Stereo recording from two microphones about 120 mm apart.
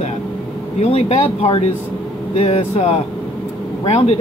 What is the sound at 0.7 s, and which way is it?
Speech, 60° left (ahead or behind).